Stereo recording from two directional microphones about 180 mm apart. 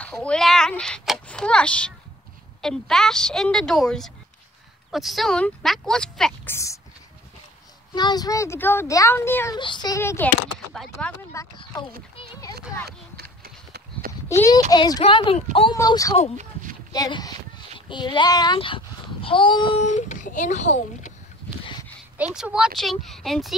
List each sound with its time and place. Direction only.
0.0 s speech: 5° left (ahead or behind)
6.5 s speech: 15° left (ahead or behind)
7.9 s speech: 25° left (ahead or behind)
9.6 s speech: 25° left (ahead or behind); by 11.1 s 5° left (ahead or behind)
11.5 s speech: 20° left (ahead or behind)
12.2 s a sound: 20° left (ahead or behind)
12.8 s clip-clop: 60° right (ahead or behind)
14.3 s speech: 20° left (ahead or behind)
15.7 s speech: 20° left (ahead or behind)
19.8 s speech: 40° left (ahead or behind)
22.1 s speech: 5° right (ahead or behind)